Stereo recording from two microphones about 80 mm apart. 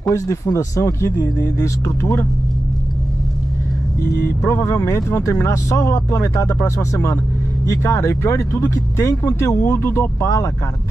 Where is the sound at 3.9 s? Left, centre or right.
Left.